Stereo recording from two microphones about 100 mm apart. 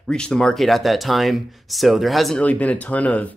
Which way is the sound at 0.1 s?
5° left (ahead or behind).